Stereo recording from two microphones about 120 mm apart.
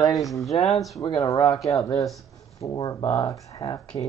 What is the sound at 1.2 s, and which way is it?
Speech, 30° left (ahead or behind).